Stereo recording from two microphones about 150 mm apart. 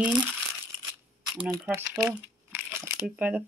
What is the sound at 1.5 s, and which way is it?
Speech, 20° right (ahead or behind).